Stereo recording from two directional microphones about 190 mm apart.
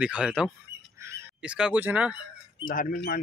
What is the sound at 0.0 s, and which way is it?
Speech, 5° right (ahead or behind).